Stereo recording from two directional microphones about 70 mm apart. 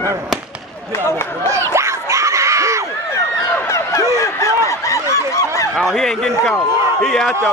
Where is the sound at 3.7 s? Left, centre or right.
Left.